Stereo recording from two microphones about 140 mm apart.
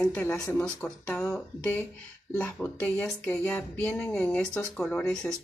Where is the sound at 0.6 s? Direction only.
5° left (ahead or behind).